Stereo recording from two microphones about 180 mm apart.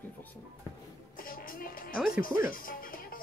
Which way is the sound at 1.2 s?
50° left (ahead or behind).